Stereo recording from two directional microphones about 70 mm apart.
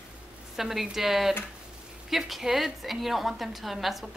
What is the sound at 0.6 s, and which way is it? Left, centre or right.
A woman's voice, centre.